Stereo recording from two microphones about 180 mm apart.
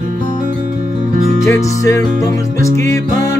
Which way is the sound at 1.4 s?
15° left (ahead or behind).